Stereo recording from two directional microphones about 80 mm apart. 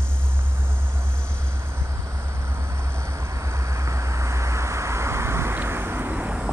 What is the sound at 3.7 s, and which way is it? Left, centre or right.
Vehicle, right.